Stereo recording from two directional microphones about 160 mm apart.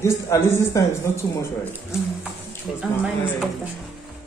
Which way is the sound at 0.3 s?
20° left (ahead or behind).